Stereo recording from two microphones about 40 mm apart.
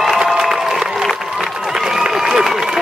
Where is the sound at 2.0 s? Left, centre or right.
Centre.